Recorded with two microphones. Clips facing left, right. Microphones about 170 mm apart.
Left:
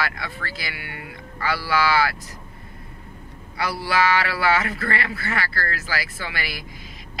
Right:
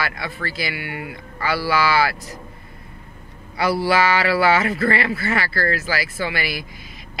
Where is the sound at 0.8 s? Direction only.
75° right (ahead or behind).